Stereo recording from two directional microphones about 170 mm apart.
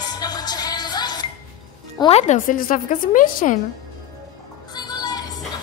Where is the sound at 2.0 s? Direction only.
40° left (ahead or behind).